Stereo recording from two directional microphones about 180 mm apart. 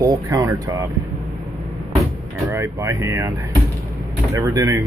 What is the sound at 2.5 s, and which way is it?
Speech, 15° right (ahead or behind).